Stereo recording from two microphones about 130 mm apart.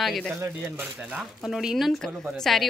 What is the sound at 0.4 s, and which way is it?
Speech, 20° right (ahead or behind).